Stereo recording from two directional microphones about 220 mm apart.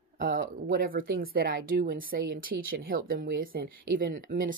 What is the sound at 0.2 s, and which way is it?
Speech, 40° right (ahead or behind).